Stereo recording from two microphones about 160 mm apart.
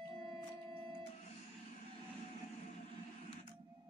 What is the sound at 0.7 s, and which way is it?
Music, 35° right (ahead or behind).